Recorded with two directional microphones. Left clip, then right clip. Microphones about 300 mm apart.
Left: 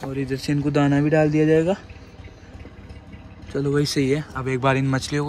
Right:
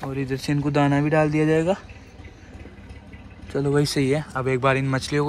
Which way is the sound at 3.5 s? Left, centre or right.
Centre.